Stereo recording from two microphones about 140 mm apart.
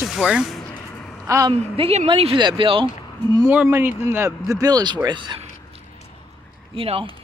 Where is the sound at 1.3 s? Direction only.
20° right (ahead or behind).